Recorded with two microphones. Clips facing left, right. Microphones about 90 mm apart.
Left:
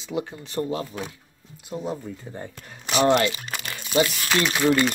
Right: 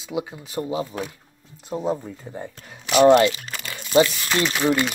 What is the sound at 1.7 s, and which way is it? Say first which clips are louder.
Speech: right 4 dB; 75° right (ahead or behind).